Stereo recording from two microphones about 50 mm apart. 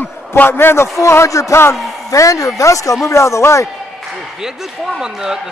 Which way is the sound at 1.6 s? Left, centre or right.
Left.